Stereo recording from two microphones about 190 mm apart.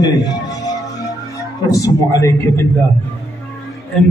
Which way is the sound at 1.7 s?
15° left (ahead or behind).